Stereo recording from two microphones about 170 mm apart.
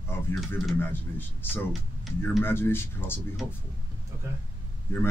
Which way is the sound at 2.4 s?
15° left (ahead or behind).